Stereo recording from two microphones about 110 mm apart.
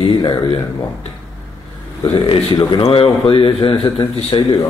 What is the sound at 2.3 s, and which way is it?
Speech, 45° left (ahead or behind).